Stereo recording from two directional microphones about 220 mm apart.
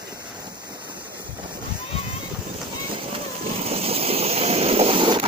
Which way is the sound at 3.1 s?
25° right (ahead or behind).